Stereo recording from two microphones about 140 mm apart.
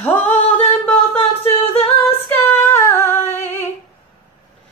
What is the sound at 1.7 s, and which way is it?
A capella, 45° left (ahead or behind).